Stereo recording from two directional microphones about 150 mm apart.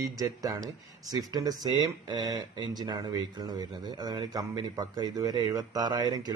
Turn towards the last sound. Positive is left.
turn(degrees=-25)  # may be behind; listen again after turning